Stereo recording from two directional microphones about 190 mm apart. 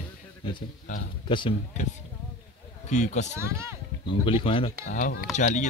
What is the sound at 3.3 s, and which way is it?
Speech, 15° right (ahead or behind).